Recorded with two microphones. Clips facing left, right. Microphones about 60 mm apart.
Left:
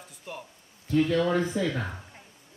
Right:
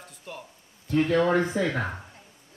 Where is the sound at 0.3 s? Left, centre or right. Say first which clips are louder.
Left 1 dB; centre.